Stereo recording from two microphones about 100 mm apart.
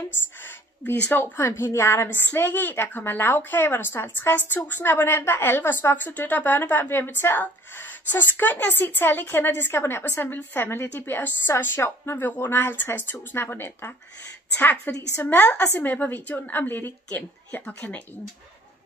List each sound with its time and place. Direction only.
0.8 s a woman's voice: 20° left (ahead or behind)